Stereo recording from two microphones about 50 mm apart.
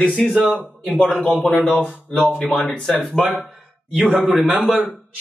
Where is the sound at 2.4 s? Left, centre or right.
Centre.